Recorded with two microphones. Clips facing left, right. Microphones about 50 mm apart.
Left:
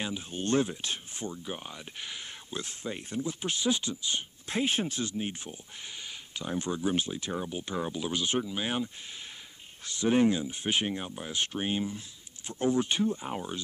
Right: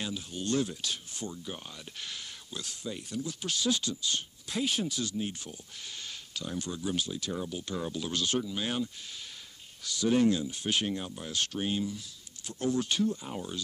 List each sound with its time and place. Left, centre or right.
0.0 s speech: left